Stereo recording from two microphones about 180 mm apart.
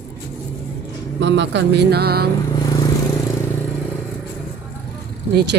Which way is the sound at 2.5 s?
20° left (ahead or behind).